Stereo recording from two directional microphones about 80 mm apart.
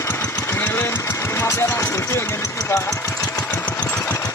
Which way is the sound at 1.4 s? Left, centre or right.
Left.